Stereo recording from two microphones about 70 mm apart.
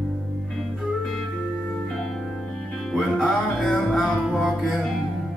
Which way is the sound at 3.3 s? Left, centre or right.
Centre.